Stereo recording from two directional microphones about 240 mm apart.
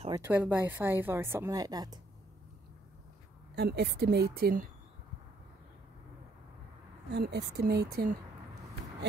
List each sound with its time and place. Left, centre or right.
0.1 s speech: centre
3.5 s a woman's voice: right
7.1 s speech: right